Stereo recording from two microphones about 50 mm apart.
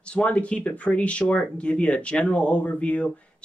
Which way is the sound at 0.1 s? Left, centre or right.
Left.